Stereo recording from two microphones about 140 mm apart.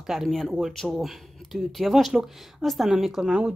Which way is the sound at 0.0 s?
Centre (ahead or behind).